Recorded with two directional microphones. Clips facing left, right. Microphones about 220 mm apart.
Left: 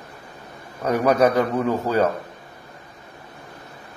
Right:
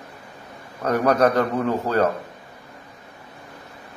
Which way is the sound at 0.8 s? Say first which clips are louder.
Left 1 dB; 5° left (ahead or behind).